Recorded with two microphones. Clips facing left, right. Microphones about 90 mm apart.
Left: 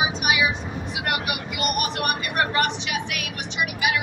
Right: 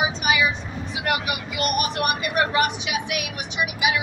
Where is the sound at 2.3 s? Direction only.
5° right (ahead or behind).